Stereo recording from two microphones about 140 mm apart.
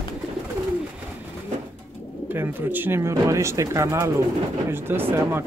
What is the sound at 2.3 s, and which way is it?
Speech, 15° right (ahead or behind).